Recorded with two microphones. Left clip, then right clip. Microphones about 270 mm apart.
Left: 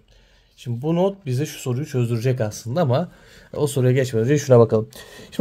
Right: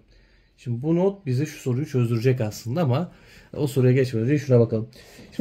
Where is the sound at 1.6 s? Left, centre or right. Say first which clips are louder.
Right 1 dB; left.